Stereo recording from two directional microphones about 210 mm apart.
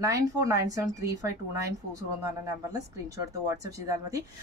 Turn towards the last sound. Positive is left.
turn(degrees=-15)  # may be behind; listen again after turning